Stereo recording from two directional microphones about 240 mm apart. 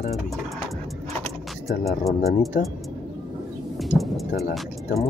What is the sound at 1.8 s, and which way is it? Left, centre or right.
Speech, centre.